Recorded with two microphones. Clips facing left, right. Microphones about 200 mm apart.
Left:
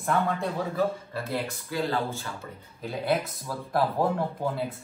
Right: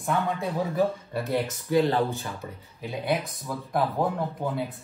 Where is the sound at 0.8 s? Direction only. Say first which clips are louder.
Right 2 dB; 20° right (ahead or behind).